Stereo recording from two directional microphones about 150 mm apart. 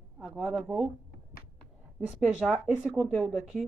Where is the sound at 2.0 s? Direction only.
5° right (ahead or behind).